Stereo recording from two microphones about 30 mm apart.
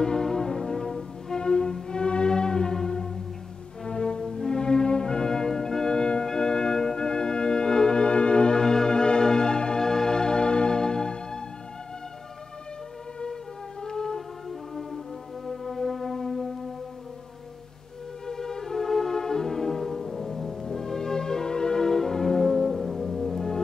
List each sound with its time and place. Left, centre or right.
0.0 s music: left
1.4 s music: left
4.6 s music: left
6.2 s organ: left
8.5 s music: left
13.8 s music: centre
15.4 s music: centre
18.2 s music: centre